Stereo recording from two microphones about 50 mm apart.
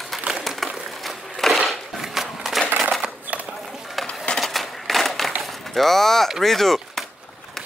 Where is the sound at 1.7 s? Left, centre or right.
Centre.